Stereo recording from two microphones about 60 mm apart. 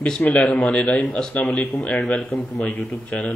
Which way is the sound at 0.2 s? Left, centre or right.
Left.